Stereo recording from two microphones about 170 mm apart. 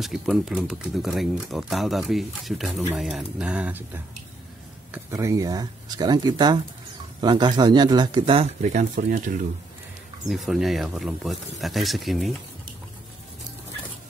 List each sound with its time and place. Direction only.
0.0 s speech: centre (ahead or behind); by 8.5 s 30° right (ahead or behind)
8.7 s speech: 50° right (ahead or behind)
10.2 s speech: centre (ahead or behind)